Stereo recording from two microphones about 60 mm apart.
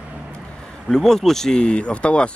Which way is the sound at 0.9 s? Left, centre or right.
Centre.